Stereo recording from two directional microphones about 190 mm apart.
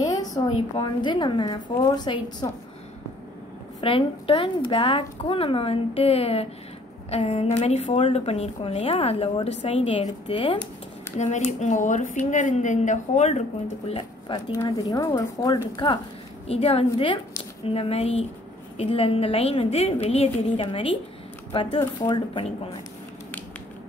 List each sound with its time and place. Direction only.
0.0 s speech: 20° left (ahead or behind)
3.8 s a woman's voice: 30° left (ahead or behind)
14.5 s speech: 20° left (ahead or behind)
16.4 s a woman's voice: 30° left (ahead or behind)